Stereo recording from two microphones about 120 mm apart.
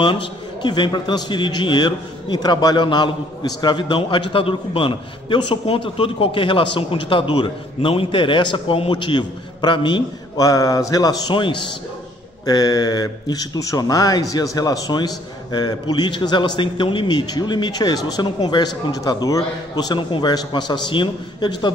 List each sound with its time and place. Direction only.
0.0 s a man's voice: 40° left (ahead or behind)